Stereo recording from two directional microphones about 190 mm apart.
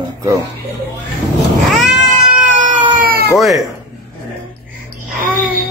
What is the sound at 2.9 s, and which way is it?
Cat, 50° right (ahead or behind).